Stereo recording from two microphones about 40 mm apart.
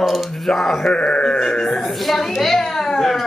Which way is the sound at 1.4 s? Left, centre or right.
Centre.